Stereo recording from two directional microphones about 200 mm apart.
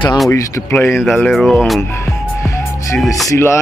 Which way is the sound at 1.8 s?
15° left (ahead or behind).